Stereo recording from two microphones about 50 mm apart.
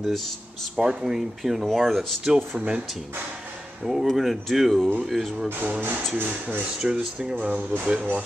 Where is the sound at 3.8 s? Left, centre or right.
Centre.